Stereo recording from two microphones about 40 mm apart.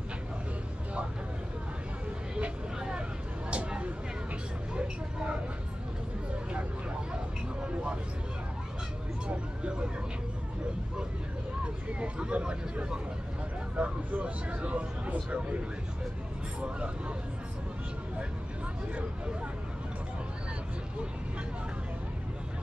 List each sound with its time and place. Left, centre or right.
3.4 s a sound: right
7.6 s vehicle: right
11.6 s vehicle: right
13.7 s speech: right